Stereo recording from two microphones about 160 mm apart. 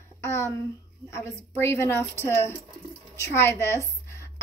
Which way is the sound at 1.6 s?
15° left (ahead or behind).